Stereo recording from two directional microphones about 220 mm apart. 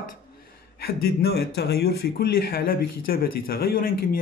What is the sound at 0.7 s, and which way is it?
Speech, 45° left (ahead or behind).